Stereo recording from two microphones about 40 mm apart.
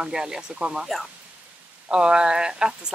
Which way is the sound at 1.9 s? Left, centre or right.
Right.